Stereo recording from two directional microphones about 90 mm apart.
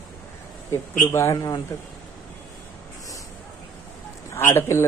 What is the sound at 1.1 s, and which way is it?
Speech, 35° left (ahead or behind).